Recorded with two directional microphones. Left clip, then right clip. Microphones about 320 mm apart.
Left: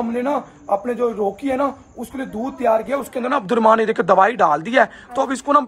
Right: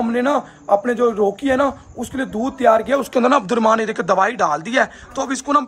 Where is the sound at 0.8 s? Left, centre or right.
Right.